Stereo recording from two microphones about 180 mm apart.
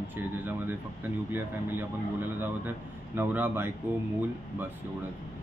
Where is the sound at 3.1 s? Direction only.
10° right (ahead or behind).